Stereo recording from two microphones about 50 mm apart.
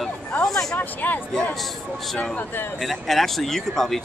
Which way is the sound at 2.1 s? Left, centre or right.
Left.